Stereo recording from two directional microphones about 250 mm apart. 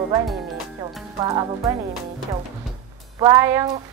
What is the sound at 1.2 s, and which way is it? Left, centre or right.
Speech, centre.